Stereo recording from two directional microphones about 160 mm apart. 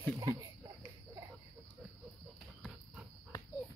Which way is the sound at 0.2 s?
20° right (ahead or behind).